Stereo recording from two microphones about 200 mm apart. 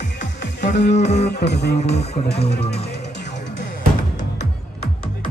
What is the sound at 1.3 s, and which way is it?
Music, 55° left (ahead or behind).